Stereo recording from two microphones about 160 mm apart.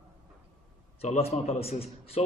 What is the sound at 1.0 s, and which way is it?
A man's voice, 40° left (ahead or behind).